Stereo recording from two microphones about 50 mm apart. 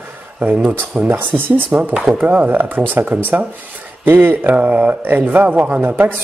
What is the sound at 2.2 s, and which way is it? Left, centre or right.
A man's voice, right.